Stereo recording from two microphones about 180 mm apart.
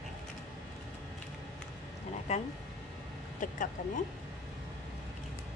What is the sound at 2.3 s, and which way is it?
Speech, 40° left (ahead or behind).